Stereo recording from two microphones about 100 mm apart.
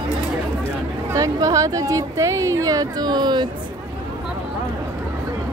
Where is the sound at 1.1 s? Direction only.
35° right (ahead or behind).